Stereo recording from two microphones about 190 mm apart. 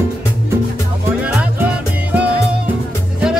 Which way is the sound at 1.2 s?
5° right (ahead or behind).